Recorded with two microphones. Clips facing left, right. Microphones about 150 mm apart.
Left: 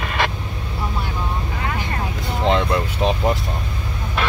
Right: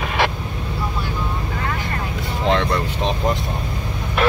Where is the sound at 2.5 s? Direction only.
5° left (ahead or behind).